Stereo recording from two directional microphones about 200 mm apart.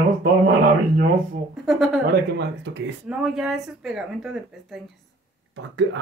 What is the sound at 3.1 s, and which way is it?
Speech, 5° right (ahead or behind).